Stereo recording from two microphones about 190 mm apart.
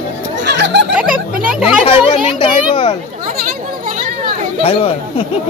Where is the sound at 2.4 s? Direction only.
25° left (ahead or behind).